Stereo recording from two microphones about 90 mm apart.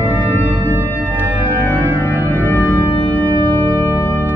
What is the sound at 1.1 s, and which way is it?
Organ, 20° right (ahead or behind).